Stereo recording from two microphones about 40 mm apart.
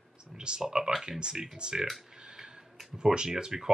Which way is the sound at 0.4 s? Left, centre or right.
Right.